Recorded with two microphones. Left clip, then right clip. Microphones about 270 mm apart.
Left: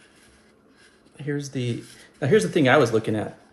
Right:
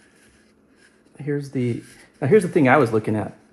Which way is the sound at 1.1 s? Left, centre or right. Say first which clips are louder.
Right 3 dB; centre.